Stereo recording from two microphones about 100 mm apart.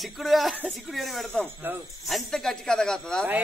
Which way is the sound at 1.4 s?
20° right (ahead or behind).